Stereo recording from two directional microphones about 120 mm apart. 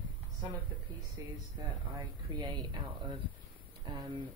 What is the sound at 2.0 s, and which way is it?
Speech, 35° right (ahead or behind).